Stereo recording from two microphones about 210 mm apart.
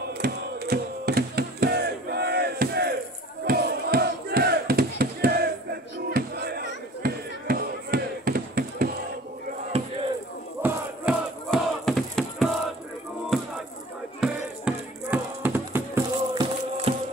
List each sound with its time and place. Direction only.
0.2 s a sound: 45° right (ahead or behind)
3.4 s battle cry: 45° right (ahead or behind)
6.1 s music: 50° right (ahead or behind)
9.7 s chop: 30° right (ahead or behind)
10.6 s battle cry: 5° right (ahead or behind)
14.2 s music: 5° right (ahead or behind)
16.3 s music: 30° right (ahead or behind)